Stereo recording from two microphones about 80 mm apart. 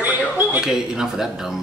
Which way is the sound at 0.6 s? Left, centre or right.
Centre.